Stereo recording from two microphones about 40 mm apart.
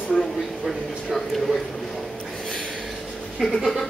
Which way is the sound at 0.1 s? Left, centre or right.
Centre.